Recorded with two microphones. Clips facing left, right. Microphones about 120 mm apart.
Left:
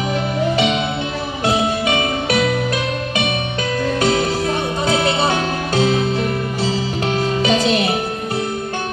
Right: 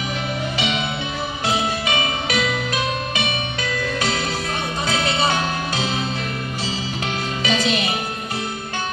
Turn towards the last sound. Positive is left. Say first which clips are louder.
# left 5 dB
turn(degrees=35)  # may be behind; listen again after turning